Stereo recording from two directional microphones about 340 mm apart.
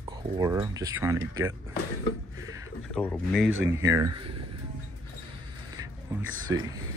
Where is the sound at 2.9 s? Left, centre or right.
Centre.